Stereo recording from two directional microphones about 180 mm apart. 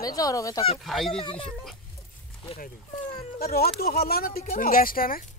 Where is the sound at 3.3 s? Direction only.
60° left (ahead or behind).